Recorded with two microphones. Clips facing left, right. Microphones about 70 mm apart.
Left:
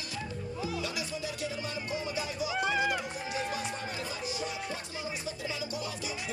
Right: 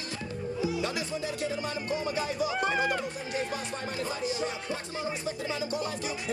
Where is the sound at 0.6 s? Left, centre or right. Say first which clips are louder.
Right 5 dB; centre.